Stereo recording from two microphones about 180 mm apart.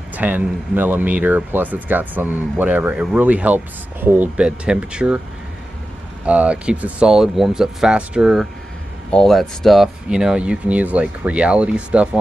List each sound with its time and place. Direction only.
0.1 s a man's voice: 10° right (ahead or behind)
6.2 s speech: 5° right (ahead or behind)